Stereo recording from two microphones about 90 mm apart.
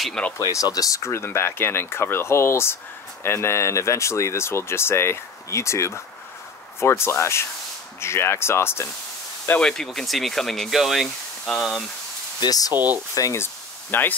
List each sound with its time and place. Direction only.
0.0 s speech: 10° left (ahead or behind)
0.5 s speech: 40° left (ahead or behind)
9.6 s speech: 5° left (ahead or behind)
12.4 s speech: 45° left (ahead or behind)
12.7 s speech: 20° right (ahead or behind)
13.1 s speech: 35° left (ahead or behind)